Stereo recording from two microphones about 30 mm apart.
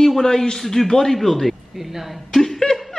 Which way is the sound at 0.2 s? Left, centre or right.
Left.